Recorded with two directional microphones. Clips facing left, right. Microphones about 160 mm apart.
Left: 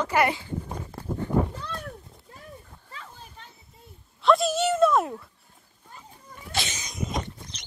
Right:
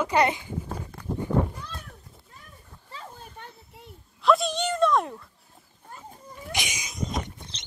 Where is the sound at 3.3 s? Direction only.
70° right (ahead or behind).